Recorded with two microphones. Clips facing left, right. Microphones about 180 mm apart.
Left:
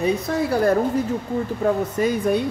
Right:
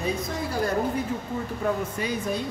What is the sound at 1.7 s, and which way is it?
Speech, 45° left (ahead or behind).